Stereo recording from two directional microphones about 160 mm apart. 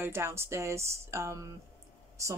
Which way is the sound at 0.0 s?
15° right (ahead or behind).